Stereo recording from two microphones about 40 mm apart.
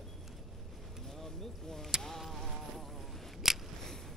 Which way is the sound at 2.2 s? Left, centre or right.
Centre.